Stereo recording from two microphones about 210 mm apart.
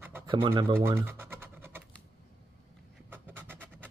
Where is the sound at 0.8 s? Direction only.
10° right (ahead or behind).